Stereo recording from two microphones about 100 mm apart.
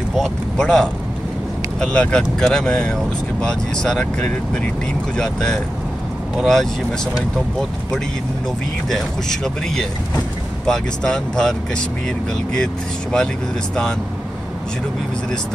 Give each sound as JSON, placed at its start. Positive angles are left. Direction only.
{"t": 0.1, "sound": "speech", "side_deg": 5}
{"t": 8.9, "sound": "speech", "side_deg": 5}